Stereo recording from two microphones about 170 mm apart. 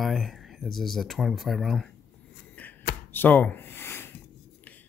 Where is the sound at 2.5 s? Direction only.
10° left (ahead or behind).